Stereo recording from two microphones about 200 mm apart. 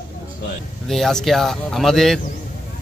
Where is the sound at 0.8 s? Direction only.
Centre (ahead or behind).